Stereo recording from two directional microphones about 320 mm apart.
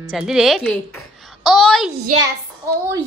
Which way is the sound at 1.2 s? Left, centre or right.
Centre.